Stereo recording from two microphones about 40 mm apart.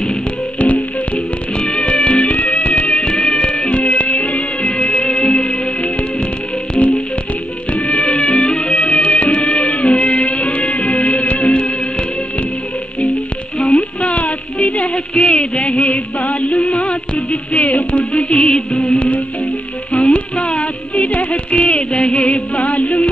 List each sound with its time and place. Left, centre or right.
0.6 s music: left
1.6 s music: left
7.7 s music: left
13.6 s a sound: left
18.4 s music: left